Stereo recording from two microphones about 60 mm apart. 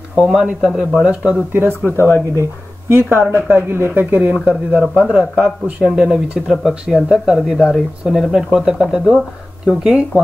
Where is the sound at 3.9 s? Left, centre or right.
Right.